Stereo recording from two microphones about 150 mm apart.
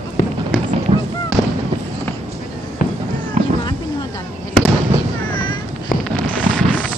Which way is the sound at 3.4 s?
50° right (ahead or behind).